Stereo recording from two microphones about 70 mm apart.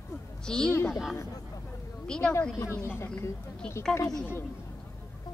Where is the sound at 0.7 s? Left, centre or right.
Left.